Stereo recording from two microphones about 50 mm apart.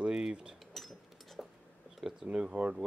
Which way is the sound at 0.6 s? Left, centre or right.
Centre.